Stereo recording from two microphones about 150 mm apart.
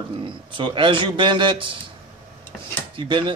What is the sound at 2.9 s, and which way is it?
Speech, 30° right (ahead or behind).